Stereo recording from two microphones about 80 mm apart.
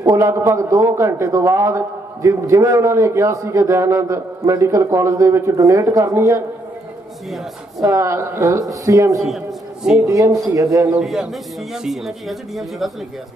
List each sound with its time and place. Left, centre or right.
0.0 s a man's voice: right
7.8 s speech: right
11.0 s speech: centre